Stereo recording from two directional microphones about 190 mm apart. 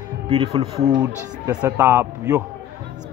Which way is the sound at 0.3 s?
30° right (ahead or behind).